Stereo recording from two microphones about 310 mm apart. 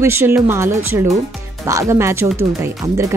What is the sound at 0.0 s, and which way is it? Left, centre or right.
Speech, centre.